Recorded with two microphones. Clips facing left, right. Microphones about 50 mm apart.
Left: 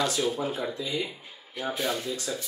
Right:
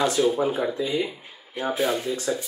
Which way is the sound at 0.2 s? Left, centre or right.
Centre.